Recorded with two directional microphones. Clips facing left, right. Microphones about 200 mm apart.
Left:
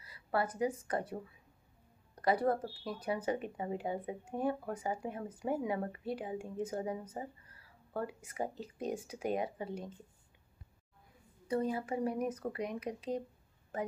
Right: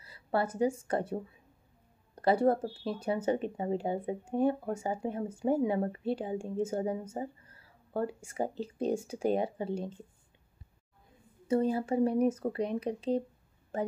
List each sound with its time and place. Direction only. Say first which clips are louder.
0.0 s speech: right 3 dB; 25° right (ahead or behind)
11.4 s speech: right 6 dB; 30° right (ahead or behind)